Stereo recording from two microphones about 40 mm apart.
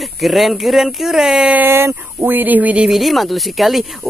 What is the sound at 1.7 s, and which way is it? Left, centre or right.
Speech, right.